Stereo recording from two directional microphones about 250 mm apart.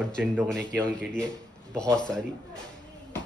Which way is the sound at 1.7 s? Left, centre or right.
Centre.